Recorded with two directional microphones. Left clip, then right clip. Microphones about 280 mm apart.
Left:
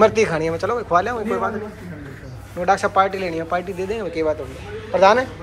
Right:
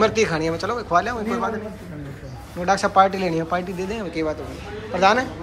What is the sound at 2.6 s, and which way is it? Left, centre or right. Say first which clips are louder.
A man's voice: even; centre.